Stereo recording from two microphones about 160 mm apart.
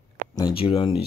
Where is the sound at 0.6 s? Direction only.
35° left (ahead or behind).